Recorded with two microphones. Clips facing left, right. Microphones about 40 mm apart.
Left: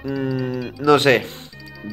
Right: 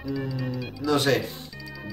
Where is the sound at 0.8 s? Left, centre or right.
Left.